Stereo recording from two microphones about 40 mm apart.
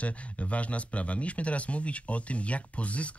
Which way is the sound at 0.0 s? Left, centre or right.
Left.